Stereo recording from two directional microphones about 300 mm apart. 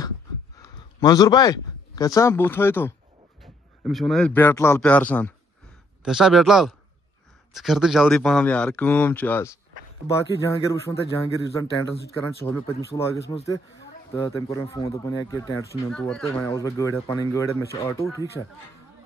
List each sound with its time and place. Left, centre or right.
0.6 s a man's voice: centre